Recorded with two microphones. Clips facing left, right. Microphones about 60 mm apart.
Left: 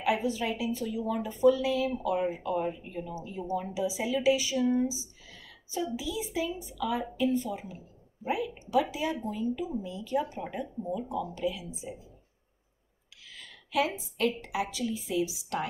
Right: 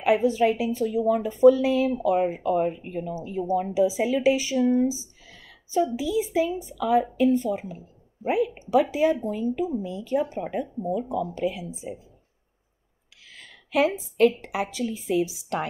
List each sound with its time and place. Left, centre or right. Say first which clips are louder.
0.1 s speech: right 10 dB; right
2.2 s speech: right 6 dB; right
5.9 s a woman's voice: right 9 dB; right
13.3 s a sound: right 5 dB; right
14.1 s a woman's voice: right 8 dB; right